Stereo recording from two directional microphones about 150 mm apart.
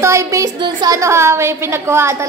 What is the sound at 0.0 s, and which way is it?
A woman's voice, 20° right (ahead or behind).